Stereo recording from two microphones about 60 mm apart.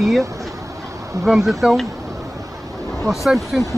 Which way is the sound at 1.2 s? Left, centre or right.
Centre.